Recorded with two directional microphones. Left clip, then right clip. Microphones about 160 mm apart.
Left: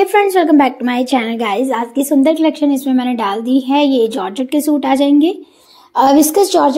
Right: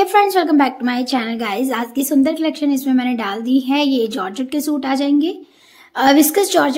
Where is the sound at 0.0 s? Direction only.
Centre (ahead or behind).